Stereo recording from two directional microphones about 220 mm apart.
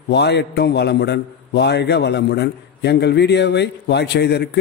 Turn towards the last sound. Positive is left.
turn(degrees=50)  # may be behind; listen again after turning